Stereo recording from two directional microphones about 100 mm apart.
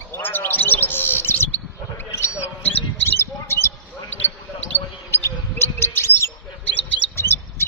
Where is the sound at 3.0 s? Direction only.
25° left (ahead or behind).